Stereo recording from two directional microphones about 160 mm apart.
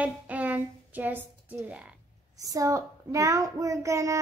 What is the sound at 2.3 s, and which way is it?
A child's voice, 20° right (ahead or behind).